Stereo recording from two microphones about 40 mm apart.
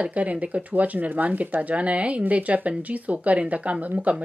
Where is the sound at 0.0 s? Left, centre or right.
Right.